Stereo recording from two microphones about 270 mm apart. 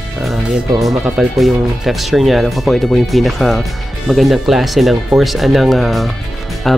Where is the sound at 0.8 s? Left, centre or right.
Centre.